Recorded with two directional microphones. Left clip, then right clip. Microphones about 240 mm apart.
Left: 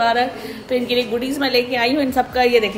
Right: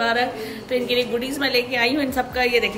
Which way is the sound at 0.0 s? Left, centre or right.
Centre.